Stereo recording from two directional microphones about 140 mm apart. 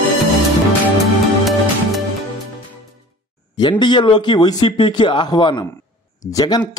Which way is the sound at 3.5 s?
30° left (ahead or behind).